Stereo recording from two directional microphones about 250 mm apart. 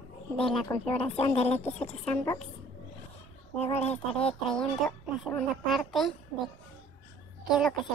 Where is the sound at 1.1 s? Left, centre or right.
Left.